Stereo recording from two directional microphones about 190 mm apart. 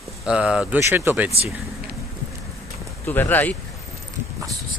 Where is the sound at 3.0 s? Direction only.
10° left (ahead or behind).